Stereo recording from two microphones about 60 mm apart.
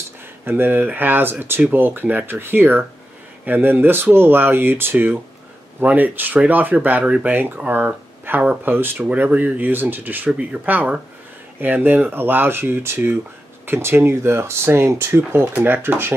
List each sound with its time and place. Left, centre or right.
0.5 s speech: right